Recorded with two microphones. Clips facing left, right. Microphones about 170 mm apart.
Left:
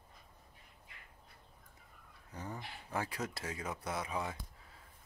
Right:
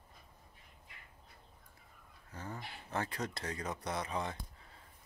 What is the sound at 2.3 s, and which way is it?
A man's voice, 15° left (ahead or behind).